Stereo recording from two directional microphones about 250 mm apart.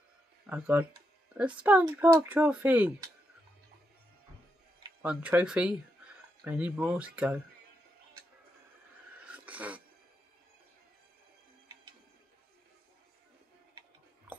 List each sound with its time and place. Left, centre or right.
0.5 s speech: centre
5.0 s speech: centre
9.2 s a sound: centre